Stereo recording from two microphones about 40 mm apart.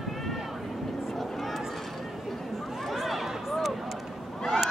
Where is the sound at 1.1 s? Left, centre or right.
Centre.